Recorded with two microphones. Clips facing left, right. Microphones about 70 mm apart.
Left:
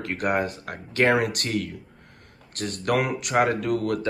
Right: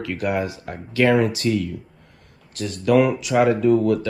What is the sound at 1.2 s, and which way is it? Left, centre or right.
Speech, left.